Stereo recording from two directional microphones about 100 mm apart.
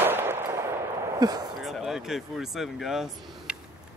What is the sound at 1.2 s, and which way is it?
Speech, 40° right (ahead or behind).